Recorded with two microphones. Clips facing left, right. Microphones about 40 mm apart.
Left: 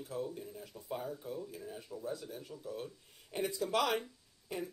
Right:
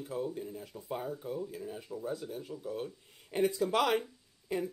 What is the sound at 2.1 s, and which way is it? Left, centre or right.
Speech, right.